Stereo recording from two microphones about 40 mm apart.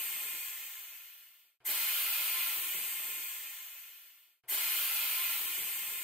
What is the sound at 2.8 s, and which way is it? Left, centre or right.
Ratchet, centre.